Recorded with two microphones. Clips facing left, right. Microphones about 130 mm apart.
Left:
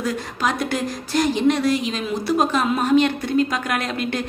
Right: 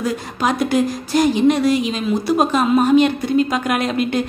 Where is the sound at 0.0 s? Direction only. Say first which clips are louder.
Right 3 dB; 10° right (ahead or behind).